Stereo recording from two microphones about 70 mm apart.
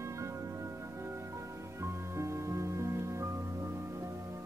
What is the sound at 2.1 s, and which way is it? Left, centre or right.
Music, right.